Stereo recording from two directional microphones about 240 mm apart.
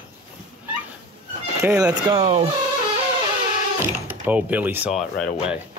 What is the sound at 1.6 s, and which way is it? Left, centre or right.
Speech, centre.